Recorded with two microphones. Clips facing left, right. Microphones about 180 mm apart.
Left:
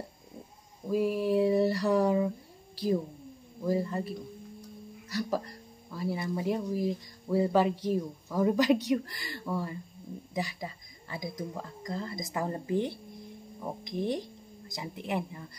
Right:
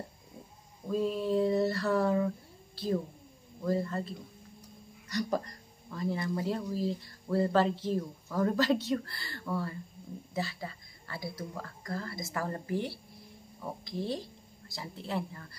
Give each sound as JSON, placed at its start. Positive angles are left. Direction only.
{"t": 0.8, "sound": "a sound", "side_deg": 10}
{"t": 3.6, "sound": "speech", "side_deg": 15}
{"t": 5.9, "sound": "speech", "side_deg": 10}